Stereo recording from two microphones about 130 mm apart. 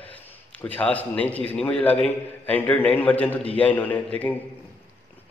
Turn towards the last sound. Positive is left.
turn(degrees=15)  # may be behind; listen again after turning